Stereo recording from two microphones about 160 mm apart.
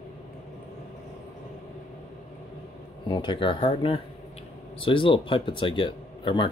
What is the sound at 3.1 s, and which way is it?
Speech, 30° left (ahead or behind).